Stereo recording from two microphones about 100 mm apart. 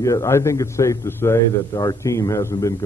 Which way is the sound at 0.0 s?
30° left (ahead or behind).